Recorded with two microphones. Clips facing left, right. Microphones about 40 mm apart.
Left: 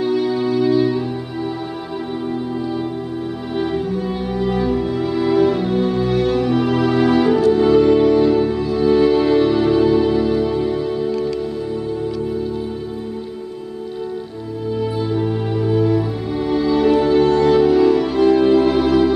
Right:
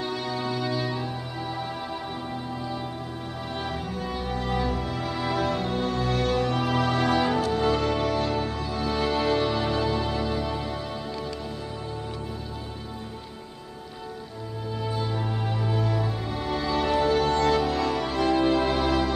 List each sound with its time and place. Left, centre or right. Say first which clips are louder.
0.0 s music: left 11 dB; centre
3.5 s music: left 12 dB; centre
11.1 s music: left 12 dB; left
14.8 s music: left 9 dB; centre